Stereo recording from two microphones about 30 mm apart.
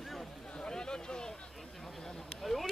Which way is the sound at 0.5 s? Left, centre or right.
Left.